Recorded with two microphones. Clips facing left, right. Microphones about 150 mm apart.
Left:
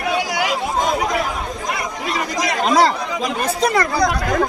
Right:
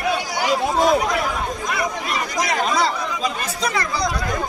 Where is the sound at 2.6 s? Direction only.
75° left (ahead or behind); by 4.5 s 60° left (ahead or behind).